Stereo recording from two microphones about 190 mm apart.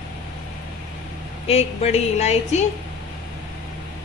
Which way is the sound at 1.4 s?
35° left (ahead or behind).